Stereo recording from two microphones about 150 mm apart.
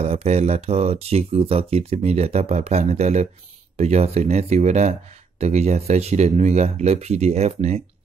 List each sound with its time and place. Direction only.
0.0 s speech: 45° right (ahead or behind)